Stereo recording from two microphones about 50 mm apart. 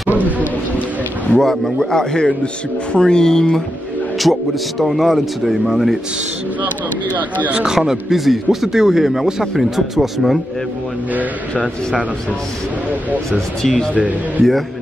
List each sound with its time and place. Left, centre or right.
0.1 s a sound: right
1.4 s speech: centre
4.2 s speech: centre
7.1 s speech: left
7.6 s a man's voice: centre
13.6 s speech: centre
13.9 s speech: right